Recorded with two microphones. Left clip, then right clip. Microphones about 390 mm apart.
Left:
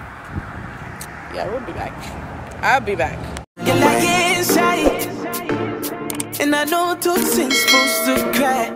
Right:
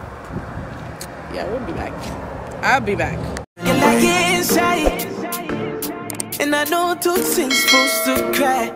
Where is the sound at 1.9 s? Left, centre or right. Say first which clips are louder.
Right 2 dB; right.